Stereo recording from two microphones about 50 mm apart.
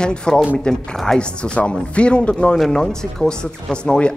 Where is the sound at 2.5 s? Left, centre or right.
Centre.